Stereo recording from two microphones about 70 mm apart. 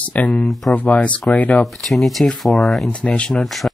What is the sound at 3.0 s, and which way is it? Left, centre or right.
Speech, centre.